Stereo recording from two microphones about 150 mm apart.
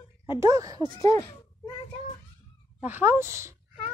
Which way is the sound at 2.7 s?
10° right (ahead or behind).